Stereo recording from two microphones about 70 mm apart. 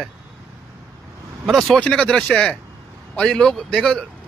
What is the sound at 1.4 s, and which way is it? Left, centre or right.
Speech, centre.